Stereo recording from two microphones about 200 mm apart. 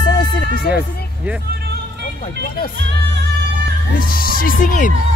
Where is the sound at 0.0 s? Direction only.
45° left (ahead or behind).